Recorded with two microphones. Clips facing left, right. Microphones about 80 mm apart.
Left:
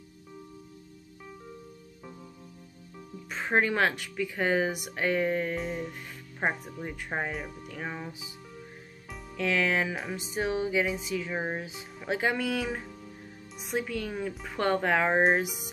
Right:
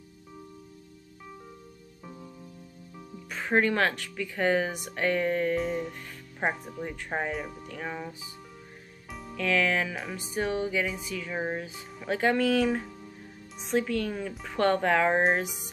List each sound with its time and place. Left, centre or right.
3.3 s speech: centre
5.6 s music: centre
6.4 s speech: centre
9.4 s speech: centre
14.3 s music: centre
14.6 s speech: centre